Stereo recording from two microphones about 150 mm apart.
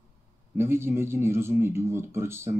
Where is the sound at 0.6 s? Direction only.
15° right (ahead or behind).